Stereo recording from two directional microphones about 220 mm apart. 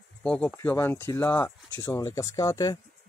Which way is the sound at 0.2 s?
5° left (ahead or behind).